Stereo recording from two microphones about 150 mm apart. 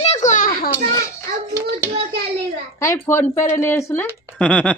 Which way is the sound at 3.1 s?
15° left (ahead or behind).